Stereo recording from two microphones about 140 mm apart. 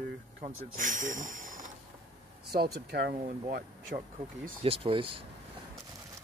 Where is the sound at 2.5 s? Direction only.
90° right.